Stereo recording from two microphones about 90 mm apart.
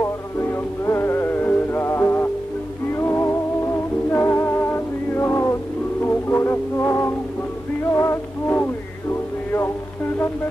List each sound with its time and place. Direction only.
0.0 s music: 30° left (ahead or behind)